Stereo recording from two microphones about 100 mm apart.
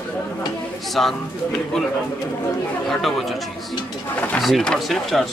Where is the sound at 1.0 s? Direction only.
5° left (ahead or behind).